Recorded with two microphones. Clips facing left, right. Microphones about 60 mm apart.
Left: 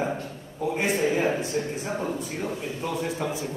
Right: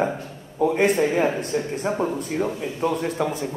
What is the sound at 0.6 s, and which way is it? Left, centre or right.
Speech, right.